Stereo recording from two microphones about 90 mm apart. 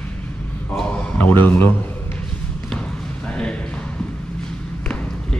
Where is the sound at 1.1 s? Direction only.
20° left (ahead or behind).